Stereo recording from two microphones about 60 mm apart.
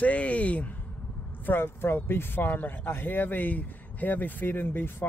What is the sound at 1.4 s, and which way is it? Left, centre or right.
Speech, left.